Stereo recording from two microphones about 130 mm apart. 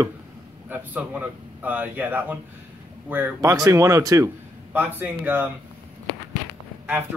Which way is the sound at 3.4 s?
25° right (ahead or behind).